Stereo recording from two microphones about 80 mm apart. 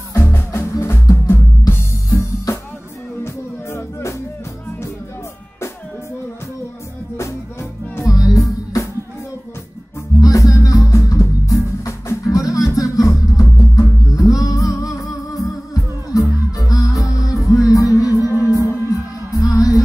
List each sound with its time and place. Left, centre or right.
0.1 s music: left
8.1 s music: left
10.1 s music: left